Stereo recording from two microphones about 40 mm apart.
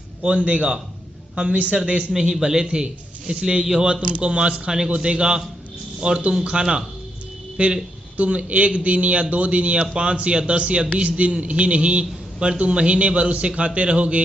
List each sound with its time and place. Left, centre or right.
0.2 s a man's voice: right